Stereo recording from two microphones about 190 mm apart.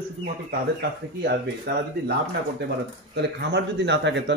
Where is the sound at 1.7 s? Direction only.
60° right (ahead or behind).